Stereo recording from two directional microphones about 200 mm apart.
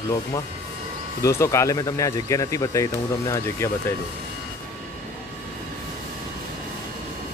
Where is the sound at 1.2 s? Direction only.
15° left (ahead or behind).